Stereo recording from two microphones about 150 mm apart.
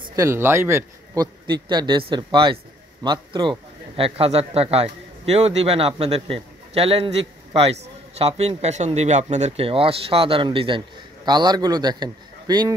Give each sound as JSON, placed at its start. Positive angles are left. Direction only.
{"t": 0.1, "sound": "a man's voice", "side_deg": -20}